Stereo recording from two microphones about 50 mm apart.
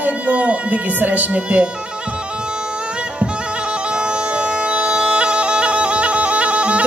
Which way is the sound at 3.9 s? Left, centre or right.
Centre.